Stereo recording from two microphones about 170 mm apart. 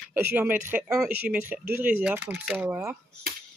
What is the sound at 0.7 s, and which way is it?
Speech, 5° right (ahead or behind).